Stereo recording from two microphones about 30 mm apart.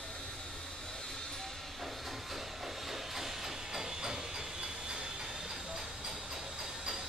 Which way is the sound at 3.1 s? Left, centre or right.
Centre.